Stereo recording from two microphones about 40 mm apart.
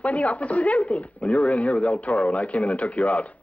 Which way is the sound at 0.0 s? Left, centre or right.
Left.